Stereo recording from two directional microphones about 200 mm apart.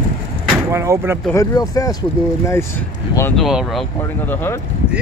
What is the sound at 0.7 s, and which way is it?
Speech, 15° right (ahead or behind).